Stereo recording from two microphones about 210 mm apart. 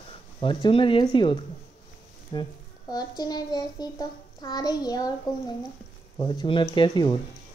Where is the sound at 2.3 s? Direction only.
20° left (ahead or behind).